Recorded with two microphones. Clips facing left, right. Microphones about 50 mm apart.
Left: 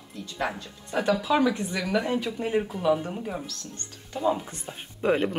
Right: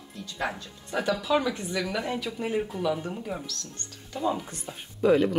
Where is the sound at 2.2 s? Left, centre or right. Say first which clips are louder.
Left 2 dB; left.